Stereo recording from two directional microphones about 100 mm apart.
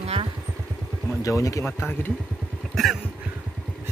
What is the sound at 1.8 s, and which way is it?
Speech, 20° left (ahead or behind).